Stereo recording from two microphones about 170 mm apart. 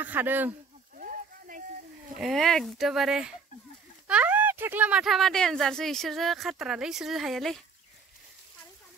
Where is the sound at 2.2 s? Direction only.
Centre (ahead or behind).